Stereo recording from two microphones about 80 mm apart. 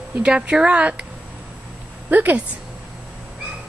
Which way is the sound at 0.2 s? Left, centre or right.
Centre.